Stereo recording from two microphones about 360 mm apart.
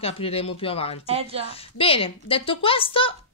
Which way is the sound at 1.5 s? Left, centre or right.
Centre.